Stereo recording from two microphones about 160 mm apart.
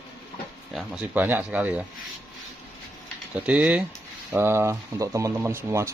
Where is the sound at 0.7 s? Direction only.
5° right (ahead or behind).